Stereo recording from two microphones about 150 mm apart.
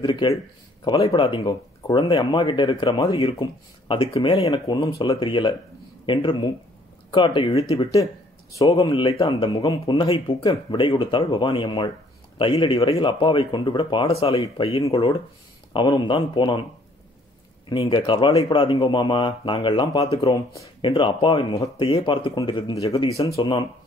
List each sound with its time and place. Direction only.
0.0 s speech: 30° left (ahead or behind)
4.5 s speech: 25° left (ahead or behind)
9.6 s speech: 25° left (ahead or behind)
17.6 s speech: 30° left (ahead or behind)